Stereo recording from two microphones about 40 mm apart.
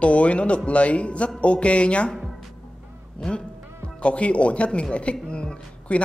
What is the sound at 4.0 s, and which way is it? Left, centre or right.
Speech, left.